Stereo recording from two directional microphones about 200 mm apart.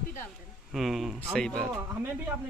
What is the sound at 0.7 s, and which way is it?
Speech, centre (ahead or behind).